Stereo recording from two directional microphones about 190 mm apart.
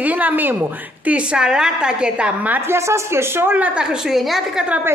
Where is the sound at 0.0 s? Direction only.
10° right (ahead or behind).